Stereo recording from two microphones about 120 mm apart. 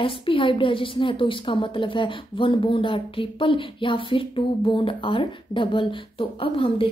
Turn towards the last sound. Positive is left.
turn(degrees=50)  # may be behind; listen again after turning